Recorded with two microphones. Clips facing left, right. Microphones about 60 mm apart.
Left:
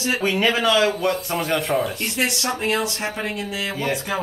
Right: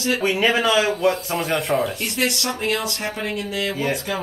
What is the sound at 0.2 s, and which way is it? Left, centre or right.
Speech, centre.